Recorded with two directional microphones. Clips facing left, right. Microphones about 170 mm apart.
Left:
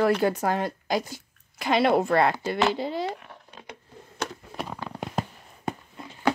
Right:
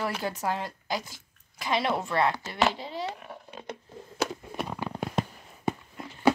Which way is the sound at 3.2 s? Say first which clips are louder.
Right 4 dB; 5° right (ahead or behind).